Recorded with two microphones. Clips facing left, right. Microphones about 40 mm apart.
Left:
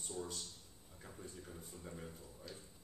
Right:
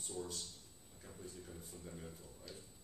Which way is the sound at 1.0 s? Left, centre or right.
Centre.